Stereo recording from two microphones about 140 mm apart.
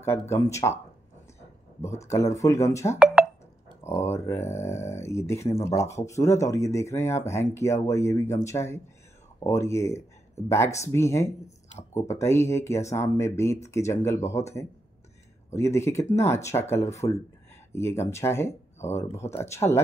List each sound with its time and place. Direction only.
0.0 s speech: 20° left (ahead or behind)
1.8 s speech: 20° left (ahead or behind)